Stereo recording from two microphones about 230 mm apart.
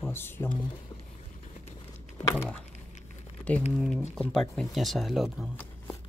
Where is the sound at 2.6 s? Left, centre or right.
Left.